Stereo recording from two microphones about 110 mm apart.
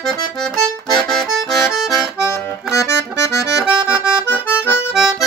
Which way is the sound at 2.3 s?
25° left (ahead or behind).